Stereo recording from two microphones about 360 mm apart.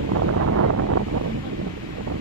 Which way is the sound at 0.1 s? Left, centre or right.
Right.